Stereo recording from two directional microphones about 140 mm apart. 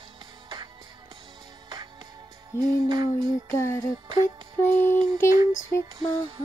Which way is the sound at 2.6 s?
30° right (ahead or behind).